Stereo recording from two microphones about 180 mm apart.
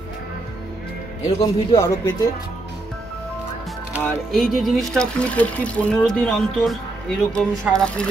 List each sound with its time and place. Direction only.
1.4 s a man's voice: 15° left (ahead or behind)
4.0 s speech: centre (ahead or behind)